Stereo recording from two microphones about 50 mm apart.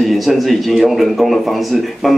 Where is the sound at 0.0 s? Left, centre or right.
Centre.